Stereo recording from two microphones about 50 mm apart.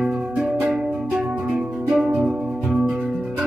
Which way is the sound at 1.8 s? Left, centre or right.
Centre.